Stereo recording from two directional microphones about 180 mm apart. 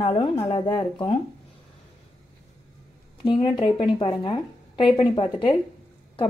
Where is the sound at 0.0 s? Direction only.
25° left (ahead or behind).